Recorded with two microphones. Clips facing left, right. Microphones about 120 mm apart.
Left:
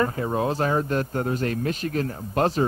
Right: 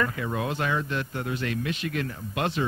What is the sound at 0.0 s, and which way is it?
Speech, 35° left (ahead or behind).